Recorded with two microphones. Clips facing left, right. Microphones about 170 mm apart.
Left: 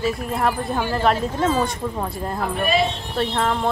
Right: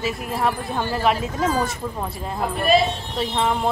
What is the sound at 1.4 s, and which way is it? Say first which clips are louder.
Speech: left 2 dB; 25° left (ahead or behind).